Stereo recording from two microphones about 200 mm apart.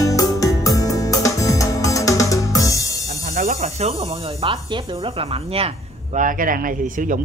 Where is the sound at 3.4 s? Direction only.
40° right (ahead or behind).